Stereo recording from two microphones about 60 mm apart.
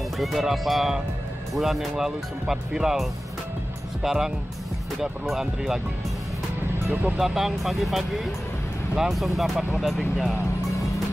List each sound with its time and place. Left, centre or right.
0.2 s speech: centre
6.9 s speech: right
7.2 s speech: centre